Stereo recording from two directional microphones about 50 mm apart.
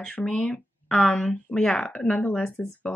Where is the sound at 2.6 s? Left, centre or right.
Left.